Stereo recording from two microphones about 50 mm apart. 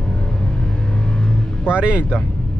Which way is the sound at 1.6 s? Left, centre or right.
Right.